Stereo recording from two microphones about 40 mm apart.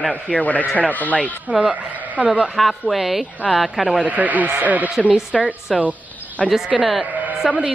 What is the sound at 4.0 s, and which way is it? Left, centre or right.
Speech, right.